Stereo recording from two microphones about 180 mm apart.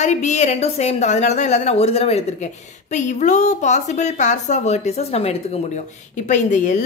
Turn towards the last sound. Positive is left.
turn(degrees=45)  # may be behind; listen again after turning